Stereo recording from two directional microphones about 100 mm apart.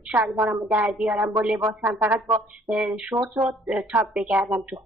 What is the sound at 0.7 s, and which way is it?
A woman's voice, 15° right (ahead or behind).